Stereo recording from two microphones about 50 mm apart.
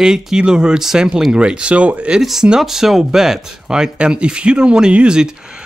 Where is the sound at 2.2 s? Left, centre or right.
Centre.